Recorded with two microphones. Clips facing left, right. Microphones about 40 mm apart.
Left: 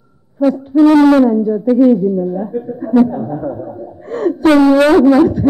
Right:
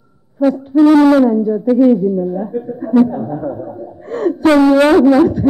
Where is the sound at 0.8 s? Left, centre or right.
Left.